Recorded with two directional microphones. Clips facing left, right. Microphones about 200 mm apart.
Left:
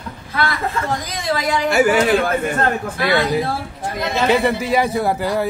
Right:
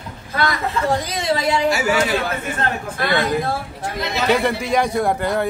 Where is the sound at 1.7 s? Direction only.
55° left (ahead or behind).